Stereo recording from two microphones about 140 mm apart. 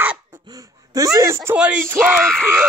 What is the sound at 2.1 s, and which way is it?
Speech, 5° left (ahead or behind).